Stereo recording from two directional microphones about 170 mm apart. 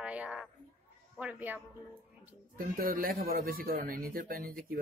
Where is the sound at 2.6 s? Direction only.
55° right (ahead or behind).